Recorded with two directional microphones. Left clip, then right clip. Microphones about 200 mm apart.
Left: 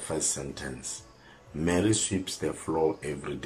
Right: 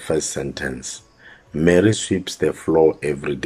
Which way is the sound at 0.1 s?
50° right (ahead or behind).